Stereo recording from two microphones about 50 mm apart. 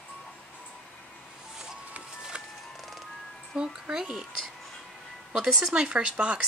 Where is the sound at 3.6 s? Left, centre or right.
Centre.